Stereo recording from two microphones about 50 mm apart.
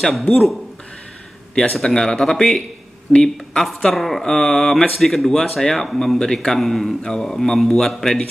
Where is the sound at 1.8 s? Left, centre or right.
Centre.